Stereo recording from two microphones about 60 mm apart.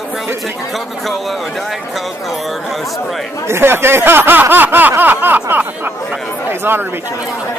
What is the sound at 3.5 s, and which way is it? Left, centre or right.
Speech, right.